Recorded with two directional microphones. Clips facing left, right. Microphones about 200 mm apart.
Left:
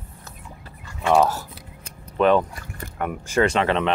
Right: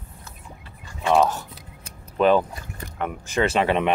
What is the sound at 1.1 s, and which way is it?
Speech, 5° left (ahead or behind).